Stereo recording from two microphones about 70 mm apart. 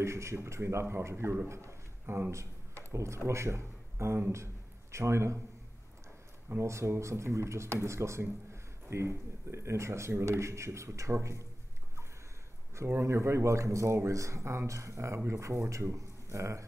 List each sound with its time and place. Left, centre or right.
0.0 s speech: right
1.5 s a sound: right
2.3 s speech: right
6.5 s speech: right
12.7 s speech: right